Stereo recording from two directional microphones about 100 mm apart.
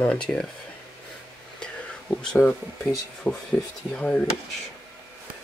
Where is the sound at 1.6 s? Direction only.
10° left (ahead or behind).